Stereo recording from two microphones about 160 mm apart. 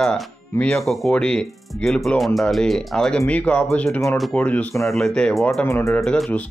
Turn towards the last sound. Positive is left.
turn(degrees=5)  # may be behind; listen again after turning